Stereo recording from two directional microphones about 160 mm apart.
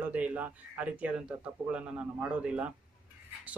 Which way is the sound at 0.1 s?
10° right (ahead or behind).